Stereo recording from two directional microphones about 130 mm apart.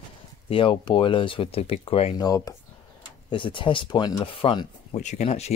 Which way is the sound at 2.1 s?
30° left (ahead or behind).